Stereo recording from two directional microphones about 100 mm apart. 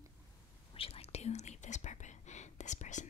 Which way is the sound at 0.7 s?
75° left (ahead or behind).